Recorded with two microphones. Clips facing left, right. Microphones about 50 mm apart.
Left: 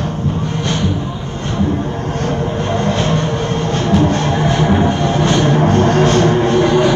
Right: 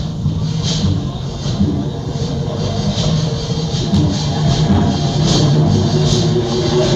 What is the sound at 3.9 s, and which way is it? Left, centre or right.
Music, left.